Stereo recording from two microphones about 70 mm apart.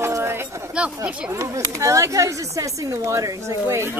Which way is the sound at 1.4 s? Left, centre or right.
Right.